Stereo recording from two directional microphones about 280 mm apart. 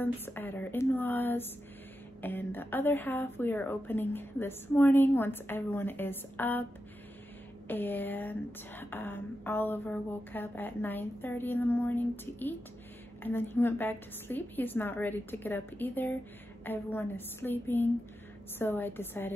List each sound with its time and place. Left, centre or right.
0.0 s speech: centre
7.6 s speech: centre